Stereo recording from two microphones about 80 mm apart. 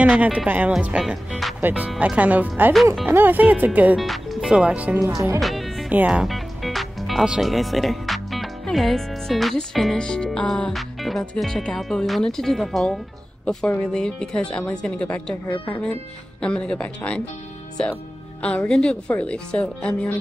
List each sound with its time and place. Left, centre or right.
0.0 s speech: centre
4.0 s speech: centre
5.0 s speech: right
5.4 s music: centre
5.9 s speech: centre
6.2 s music: centre
7.2 s speech: centre
13.9 s a woman's voice: centre